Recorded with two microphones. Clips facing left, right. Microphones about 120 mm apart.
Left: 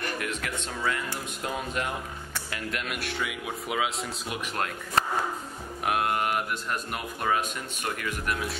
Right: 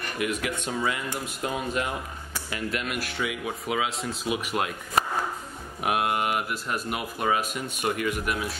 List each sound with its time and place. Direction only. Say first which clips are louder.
0.2 s speech: right 4 dB; 10° right (ahead or behind)
7.8 s speech: right 6 dB; 15° right (ahead or behind)
8.3 s speech: right 1 dB; centre (ahead or behind)